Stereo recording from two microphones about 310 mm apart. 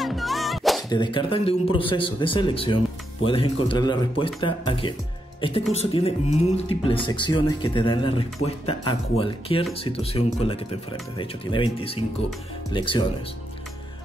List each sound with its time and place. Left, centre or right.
0.0 s music: centre
0.8 s speech: centre